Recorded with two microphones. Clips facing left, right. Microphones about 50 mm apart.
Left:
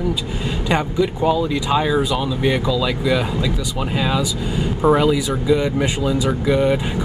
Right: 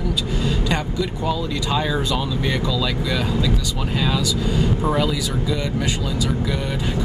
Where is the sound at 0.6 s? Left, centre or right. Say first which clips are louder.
Left 4 dB; centre.